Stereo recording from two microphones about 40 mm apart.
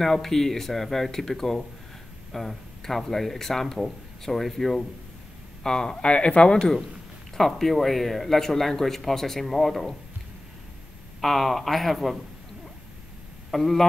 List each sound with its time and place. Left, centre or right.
0.0 s speech: centre
5.6 s speech: centre
7.3 s speech: centre
11.1 s speech: centre
13.5 s speech: centre